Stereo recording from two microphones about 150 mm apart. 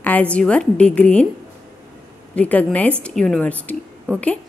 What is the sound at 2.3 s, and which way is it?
A woman's voice, 10° left (ahead or behind).